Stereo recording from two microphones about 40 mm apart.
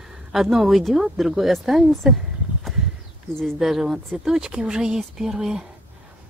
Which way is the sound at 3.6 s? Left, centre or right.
Centre.